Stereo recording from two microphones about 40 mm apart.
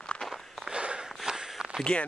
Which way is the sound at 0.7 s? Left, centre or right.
Right.